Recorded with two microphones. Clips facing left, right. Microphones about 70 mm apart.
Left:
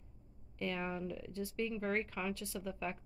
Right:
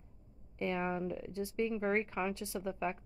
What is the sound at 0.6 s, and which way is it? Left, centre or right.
A woman's voice, right.